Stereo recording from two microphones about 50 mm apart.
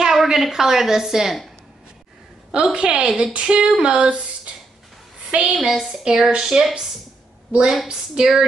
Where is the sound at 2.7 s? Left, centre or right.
Centre.